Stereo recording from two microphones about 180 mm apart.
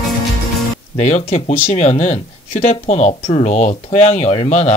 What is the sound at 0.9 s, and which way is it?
Speech, 40° left (ahead or behind).